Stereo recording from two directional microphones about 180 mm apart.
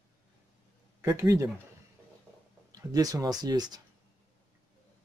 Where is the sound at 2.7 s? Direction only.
20° right (ahead or behind).